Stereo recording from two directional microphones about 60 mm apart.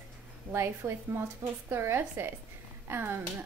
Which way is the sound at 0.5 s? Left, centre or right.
Right.